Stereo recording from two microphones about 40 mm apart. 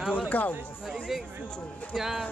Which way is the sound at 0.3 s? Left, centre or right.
Left.